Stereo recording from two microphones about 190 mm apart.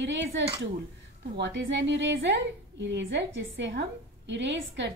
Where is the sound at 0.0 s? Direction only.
75° right (ahead or behind).